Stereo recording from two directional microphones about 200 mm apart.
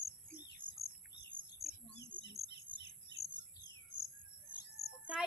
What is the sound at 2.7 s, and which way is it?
Bird vocalization, 25° right (ahead or behind).